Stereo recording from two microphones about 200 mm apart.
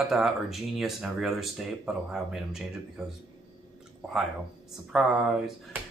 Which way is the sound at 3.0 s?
5° right (ahead or behind).